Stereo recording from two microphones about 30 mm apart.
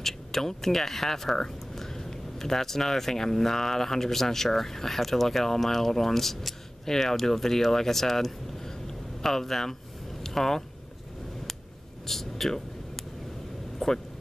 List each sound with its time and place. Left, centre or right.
0.0 s speech: centre
10.2 s vehicle: centre
12.1 s a sound: centre
13.7 s vehicle: centre